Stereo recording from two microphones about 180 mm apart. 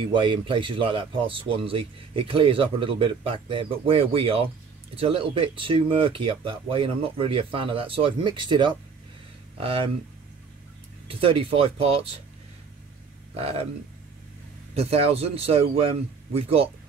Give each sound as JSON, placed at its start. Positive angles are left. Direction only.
{"t": 0.0, "sound": "speech", "side_deg": -25}
{"t": 11.1, "sound": "a man's voice", "side_deg": -30}
{"t": 13.4, "sound": "a man's voice", "side_deg": -35}
{"t": 14.7, "sound": "a man's voice", "side_deg": -30}